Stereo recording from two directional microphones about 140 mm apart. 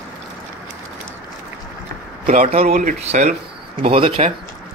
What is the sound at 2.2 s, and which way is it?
Speech, 70° right (ahead or behind).